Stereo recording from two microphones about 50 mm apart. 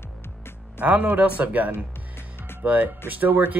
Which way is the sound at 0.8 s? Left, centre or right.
Right.